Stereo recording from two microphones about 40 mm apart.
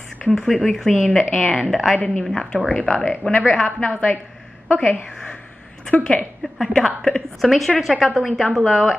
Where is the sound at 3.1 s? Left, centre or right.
Left.